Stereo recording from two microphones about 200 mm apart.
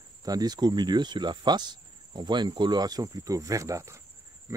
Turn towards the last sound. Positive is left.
turn(degrees=-15)  # may be behind; listen again after turning